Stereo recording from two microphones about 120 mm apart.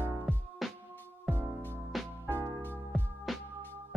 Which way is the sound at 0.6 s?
Centre (ahead or behind).